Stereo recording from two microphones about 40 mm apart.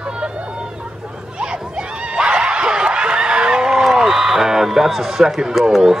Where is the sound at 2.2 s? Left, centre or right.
Right.